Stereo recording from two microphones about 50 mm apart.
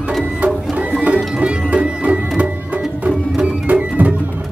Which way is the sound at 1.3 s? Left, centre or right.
Right.